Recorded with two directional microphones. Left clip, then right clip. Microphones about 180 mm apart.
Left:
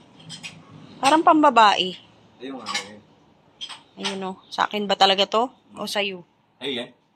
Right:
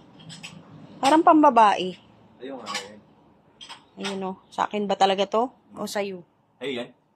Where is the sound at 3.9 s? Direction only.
10° right (ahead or behind).